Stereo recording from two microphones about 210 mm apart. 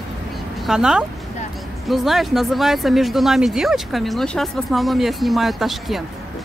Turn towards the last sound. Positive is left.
turn(degrees=0)  # may be behind; listen again after turning